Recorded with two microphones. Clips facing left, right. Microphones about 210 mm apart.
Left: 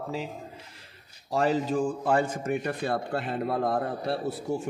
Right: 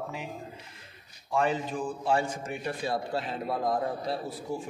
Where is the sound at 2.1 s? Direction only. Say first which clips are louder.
Left 2 dB; 55° left (ahead or behind).